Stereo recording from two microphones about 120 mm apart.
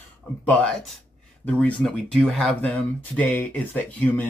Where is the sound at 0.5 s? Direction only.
10° left (ahead or behind).